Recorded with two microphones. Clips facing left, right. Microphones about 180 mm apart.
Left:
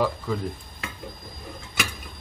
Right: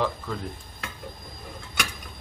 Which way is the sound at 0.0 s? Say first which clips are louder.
Left 3 dB; 5° left (ahead or behind).